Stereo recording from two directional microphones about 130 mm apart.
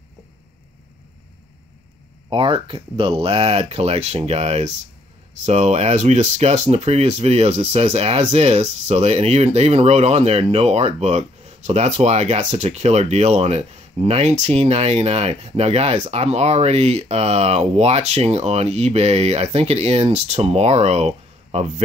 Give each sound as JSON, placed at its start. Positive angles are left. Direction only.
{"t": 2.2, "sound": "speech", "side_deg": -40}